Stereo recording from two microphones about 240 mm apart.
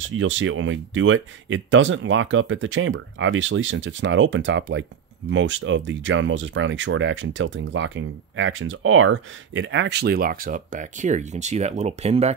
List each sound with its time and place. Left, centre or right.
0.0 s speech: right